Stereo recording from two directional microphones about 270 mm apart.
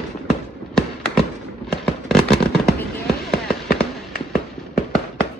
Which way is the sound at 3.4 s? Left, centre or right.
Centre.